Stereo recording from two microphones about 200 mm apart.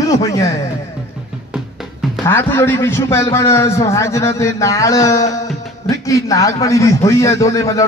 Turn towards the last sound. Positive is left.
turn(degrees=15)  # may be behind; listen again after turning